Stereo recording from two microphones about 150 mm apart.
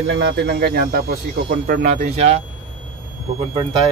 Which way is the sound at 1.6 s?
60° right (ahead or behind).